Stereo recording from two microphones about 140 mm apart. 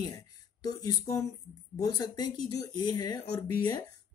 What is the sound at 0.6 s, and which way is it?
Speech, 25° left (ahead or behind).